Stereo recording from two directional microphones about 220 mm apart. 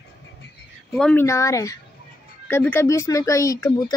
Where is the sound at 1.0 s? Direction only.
5° left (ahead or behind).